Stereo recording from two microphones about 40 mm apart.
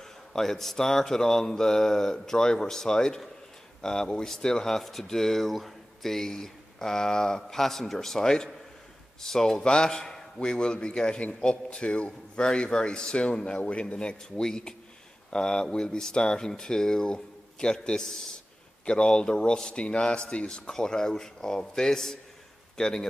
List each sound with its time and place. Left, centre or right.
0.3 s speech: centre
9.6 s speech: left